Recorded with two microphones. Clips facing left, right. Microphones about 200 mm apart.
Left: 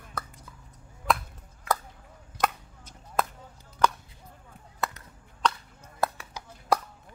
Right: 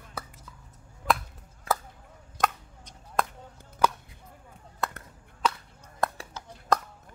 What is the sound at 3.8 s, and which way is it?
Chop, 5° right (ahead or behind).